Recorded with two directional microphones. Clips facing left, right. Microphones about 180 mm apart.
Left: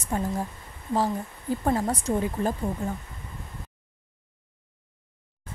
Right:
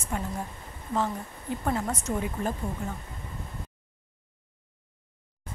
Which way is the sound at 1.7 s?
35° left (ahead or behind).